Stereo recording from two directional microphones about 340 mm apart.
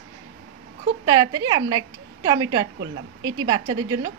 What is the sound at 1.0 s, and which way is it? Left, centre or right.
A woman's voice, centre.